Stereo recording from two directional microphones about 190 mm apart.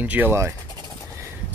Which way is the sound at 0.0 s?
10° right (ahead or behind).